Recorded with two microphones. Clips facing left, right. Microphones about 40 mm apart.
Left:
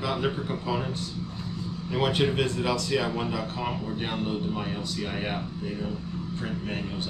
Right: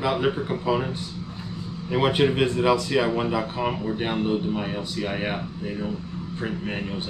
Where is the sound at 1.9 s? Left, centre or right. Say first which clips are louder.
Right 4 dB; centre.